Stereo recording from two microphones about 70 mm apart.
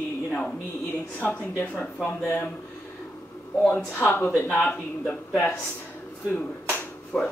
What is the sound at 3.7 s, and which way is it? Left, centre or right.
Speech, left.